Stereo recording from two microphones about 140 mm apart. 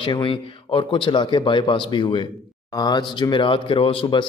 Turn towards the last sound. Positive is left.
turn(degrees=35)  # may be behind; listen again after turning